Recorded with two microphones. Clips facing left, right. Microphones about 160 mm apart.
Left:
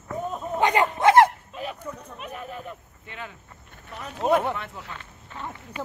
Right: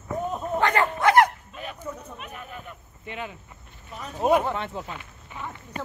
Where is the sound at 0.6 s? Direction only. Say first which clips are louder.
Left 2 dB; 15° left (ahead or behind).